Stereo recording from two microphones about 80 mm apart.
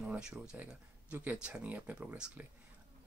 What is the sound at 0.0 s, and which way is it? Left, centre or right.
Speech, centre.